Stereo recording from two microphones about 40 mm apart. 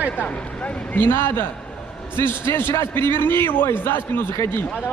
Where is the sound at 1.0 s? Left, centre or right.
Left.